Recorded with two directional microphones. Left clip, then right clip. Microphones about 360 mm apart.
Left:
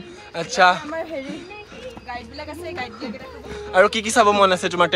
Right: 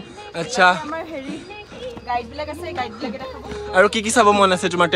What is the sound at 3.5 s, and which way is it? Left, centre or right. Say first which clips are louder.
Speech: even; centre.